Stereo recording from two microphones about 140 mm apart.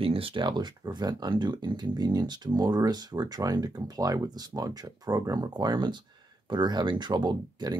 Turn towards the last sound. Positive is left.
turn(degrees=-30)  # may be behind; listen again after turning